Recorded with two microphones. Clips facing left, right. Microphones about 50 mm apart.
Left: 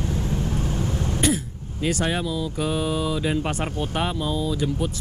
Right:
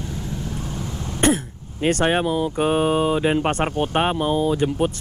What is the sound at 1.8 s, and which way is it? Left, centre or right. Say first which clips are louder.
Speech: right 5 dB; right.